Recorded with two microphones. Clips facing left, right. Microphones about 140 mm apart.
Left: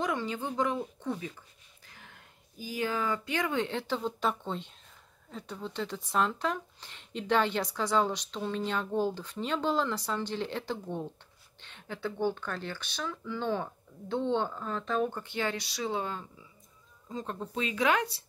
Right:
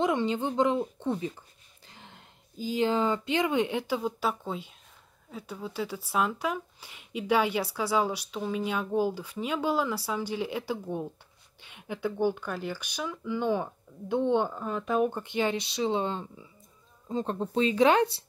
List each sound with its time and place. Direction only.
0.0 s speech: 25° right (ahead or behind)